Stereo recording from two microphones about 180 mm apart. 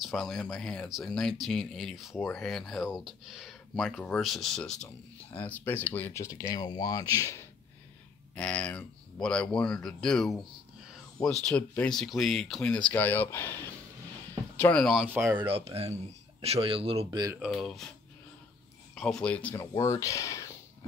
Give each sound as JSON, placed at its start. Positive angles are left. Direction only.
{"t": 0.0, "sound": "speech", "side_deg": 0}
{"t": 8.4, "sound": "speech", "side_deg": 5}
{"t": 14.6, "sound": "speech", "side_deg": 5}
{"t": 15.3, "sound": "speech", "side_deg": -30}
{"t": 17.5, "sound": "speech", "side_deg": 0}
{"t": 18.9, "sound": "speech", "side_deg": 5}